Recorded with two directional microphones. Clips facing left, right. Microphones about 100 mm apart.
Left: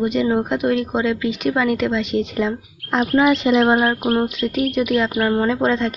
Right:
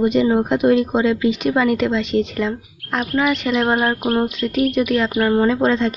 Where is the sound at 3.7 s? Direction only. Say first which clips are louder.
Even; centre (ahead or behind).